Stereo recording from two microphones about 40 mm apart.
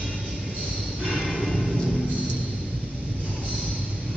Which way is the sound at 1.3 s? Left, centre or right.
Centre.